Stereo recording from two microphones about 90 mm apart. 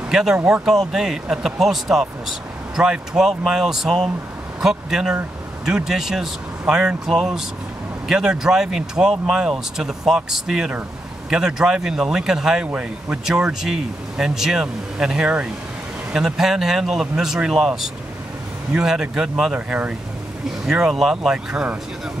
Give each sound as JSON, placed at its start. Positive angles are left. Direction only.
{"t": 0.1, "sound": "speech", "side_deg": -5}
{"t": 12.6, "sound": "speech", "side_deg": -15}
{"t": 13.3, "sound": "speech", "side_deg": -5}